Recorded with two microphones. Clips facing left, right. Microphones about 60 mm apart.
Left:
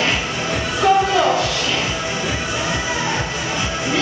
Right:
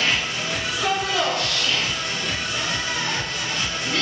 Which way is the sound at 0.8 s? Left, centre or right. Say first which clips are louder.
Left 9 dB; centre.